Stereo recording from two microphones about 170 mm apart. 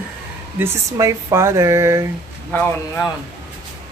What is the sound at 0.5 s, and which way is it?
Speech, 15° right (ahead or behind).